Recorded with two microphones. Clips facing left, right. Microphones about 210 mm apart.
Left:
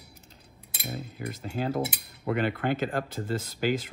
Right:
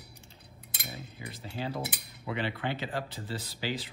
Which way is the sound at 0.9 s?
45° left (ahead or behind).